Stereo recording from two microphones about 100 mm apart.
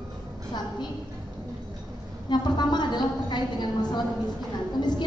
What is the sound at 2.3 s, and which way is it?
A woman's voice, 45° left (ahead or behind).